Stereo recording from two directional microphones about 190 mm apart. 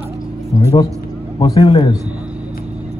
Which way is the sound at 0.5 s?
20° left (ahead or behind).